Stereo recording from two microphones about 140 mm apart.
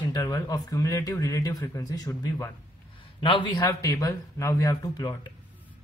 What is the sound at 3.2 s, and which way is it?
Speech, 35° left (ahead or behind).